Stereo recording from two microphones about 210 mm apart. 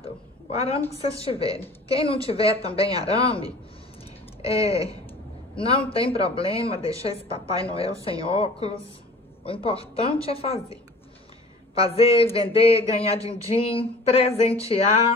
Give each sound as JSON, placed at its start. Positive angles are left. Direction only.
{"t": 0.0, "sound": "a woman's voice", "side_deg": 30}
{"t": 5.9, "sound": "speech", "side_deg": 25}
{"t": 6.8, "sound": "a woman's voice", "side_deg": -15}
{"t": 7.6, "sound": "speech", "side_deg": 25}